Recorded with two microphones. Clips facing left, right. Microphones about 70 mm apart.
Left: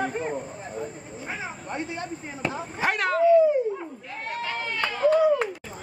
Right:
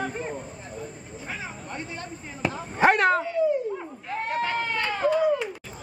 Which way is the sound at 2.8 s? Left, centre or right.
Right.